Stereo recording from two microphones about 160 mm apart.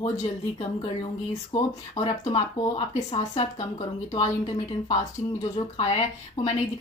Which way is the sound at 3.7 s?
25° left (ahead or behind).